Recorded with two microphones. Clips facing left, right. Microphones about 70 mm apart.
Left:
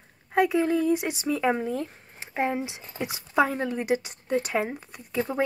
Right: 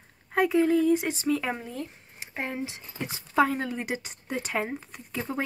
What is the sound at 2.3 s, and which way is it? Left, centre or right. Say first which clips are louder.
Speech: left 6 dB; left.